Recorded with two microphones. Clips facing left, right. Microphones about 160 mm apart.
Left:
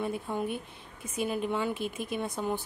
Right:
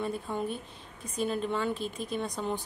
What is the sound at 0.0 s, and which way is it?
Speech, 10° left (ahead or behind).